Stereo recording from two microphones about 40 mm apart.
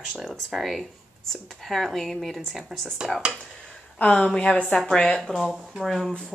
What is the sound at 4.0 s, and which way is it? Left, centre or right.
Speech, left.